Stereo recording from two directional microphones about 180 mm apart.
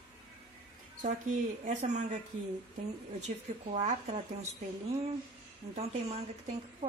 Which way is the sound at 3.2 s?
40° right (ahead or behind).